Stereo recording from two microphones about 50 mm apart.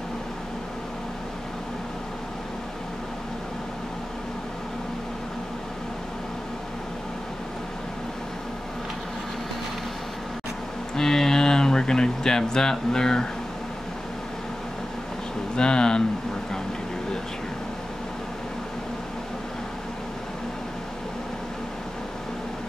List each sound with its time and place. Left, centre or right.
11.0 s speech: centre
15.5 s speech: centre